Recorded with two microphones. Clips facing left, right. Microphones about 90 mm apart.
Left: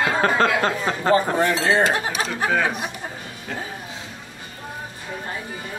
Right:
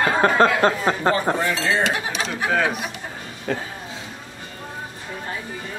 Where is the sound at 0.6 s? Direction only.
20° right (ahead or behind).